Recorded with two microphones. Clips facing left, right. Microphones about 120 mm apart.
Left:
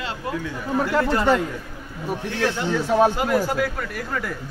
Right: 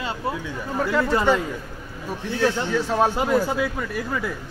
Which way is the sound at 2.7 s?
5° left (ahead or behind).